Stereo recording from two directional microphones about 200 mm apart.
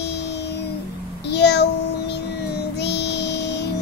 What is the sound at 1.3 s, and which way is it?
Child singing, 55° left (ahead or behind).